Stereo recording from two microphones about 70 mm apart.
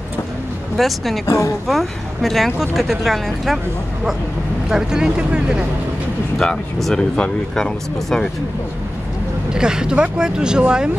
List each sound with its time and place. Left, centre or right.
0.7 s speech: centre
1.2 s a woman's voice: left
1.7 s speech: centre
4.6 s speech: centre
6.3 s speech: centre
9.5 s speech: centre